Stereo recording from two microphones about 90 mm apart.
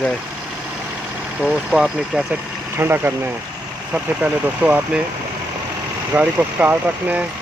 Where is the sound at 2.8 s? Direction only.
25° right (ahead or behind).